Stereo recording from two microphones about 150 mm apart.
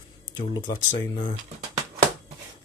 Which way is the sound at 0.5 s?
30° left (ahead or behind).